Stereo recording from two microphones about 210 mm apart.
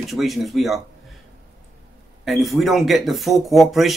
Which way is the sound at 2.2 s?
Centre (ahead or behind).